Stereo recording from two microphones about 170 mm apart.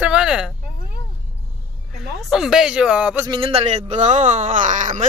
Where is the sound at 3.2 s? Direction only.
30° right (ahead or behind); by 5.1 s 45° right (ahead or behind).